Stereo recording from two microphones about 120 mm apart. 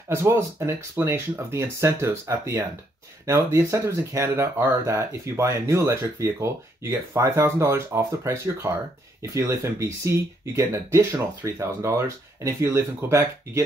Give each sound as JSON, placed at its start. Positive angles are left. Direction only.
{"t": 0.1, "sound": "speech", "side_deg": -20}